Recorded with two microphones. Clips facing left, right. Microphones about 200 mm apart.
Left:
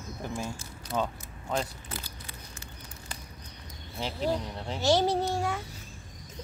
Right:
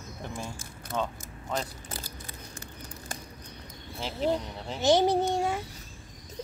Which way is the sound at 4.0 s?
Centre (ahead or behind).